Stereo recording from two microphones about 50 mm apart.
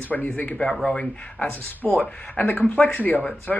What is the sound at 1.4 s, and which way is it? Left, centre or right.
Speech, left.